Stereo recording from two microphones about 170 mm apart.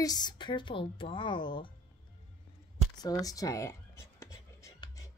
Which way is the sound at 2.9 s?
20° left (ahead or behind).